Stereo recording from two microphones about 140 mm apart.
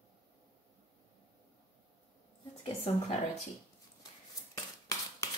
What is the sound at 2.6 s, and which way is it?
Speech, 45° left (ahead or behind).